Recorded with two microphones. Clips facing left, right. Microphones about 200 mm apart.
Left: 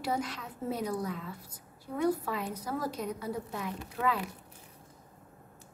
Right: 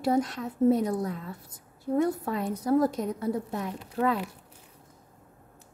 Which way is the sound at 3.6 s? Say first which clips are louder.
Right 4 dB; 40° right (ahead or behind).